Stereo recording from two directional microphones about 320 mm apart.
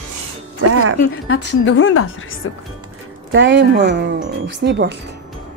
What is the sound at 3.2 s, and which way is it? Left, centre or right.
Speech, right.